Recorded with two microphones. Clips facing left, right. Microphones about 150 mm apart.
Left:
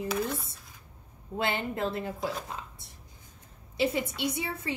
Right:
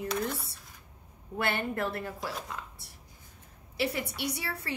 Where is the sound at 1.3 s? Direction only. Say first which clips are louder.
Even; 20° left (ahead or behind).